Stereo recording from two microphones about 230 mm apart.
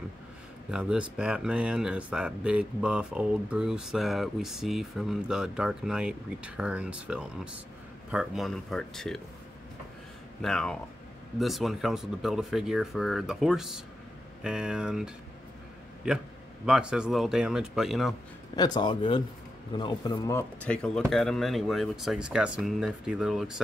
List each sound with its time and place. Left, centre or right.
0.7 s speech: centre
10.4 s speech: centre
18.6 s speech: centre